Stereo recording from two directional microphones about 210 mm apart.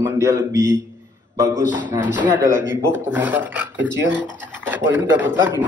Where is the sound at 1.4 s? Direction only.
35° left (ahead or behind).